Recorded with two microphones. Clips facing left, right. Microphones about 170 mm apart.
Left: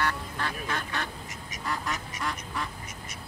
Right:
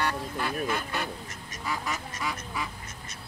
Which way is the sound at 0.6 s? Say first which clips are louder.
Right 2 dB; 5° right (ahead or behind).